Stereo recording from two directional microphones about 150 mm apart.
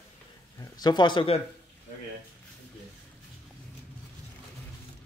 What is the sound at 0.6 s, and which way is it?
Speech, 30° left (ahead or behind).